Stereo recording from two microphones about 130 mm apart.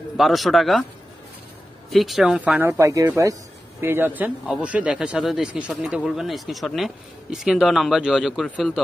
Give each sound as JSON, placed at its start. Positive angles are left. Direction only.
{"t": 0.2, "sound": "speech", "side_deg": 0}
{"t": 1.9, "sound": "speech", "side_deg": 0}
{"t": 2.8, "sound": "speech", "side_deg": -25}